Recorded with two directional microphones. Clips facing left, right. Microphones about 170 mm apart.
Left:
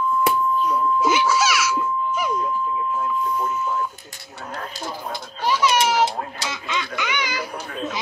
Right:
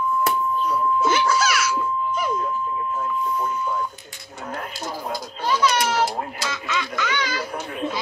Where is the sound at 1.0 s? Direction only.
10° left (ahead or behind).